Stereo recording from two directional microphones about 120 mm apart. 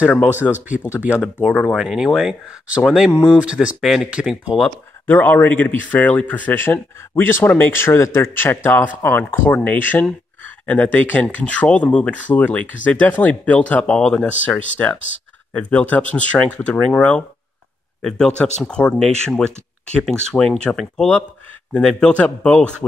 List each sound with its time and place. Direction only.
1.0 s speech: 10° right (ahead or behind)
5.0 s speech: 15° left (ahead or behind)